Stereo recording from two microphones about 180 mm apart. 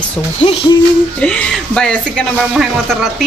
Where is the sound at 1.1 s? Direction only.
5° left (ahead or behind).